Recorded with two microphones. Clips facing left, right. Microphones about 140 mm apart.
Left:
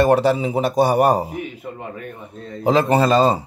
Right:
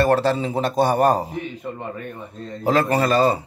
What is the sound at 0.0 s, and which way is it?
A man's voice, 15° left (ahead or behind).